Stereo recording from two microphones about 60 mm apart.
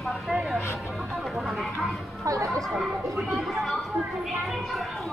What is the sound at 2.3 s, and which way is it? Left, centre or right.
Speech, right.